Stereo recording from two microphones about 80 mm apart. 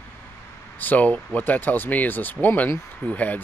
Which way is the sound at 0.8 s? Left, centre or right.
Left.